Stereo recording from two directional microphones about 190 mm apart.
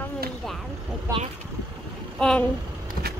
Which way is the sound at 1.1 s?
15° right (ahead or behind).